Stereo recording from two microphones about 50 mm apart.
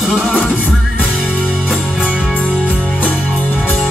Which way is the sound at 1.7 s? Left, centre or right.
Left.